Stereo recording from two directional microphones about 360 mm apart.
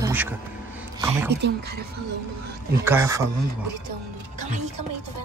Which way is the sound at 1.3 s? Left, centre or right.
Right.